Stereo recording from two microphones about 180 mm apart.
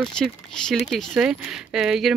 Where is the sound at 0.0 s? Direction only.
5° left (ahead or behind).